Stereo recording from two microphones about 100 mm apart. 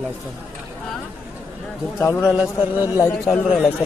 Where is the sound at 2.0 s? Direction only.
25° left (ahead or behind).